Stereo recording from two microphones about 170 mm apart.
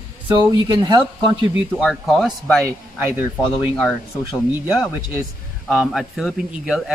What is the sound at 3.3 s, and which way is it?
Speech, 5° left (ahead or behind).